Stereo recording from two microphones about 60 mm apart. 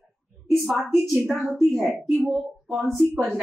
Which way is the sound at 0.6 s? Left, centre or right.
Centre.